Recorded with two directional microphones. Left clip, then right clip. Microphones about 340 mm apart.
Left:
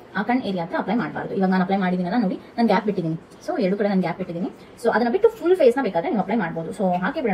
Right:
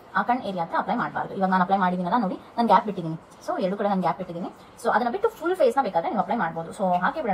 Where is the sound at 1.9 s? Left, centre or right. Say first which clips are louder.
Even; right.